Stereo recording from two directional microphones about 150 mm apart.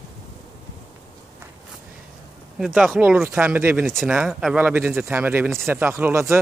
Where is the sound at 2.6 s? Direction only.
5° right (ahead or behind).